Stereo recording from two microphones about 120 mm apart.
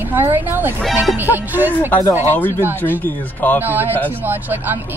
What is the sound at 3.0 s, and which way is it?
Speech, 15° left (ahead or behind).